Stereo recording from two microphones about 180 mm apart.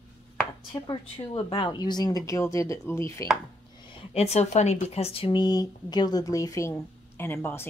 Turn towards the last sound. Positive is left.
turn(degrees=10)  # may be behind; listen again after turning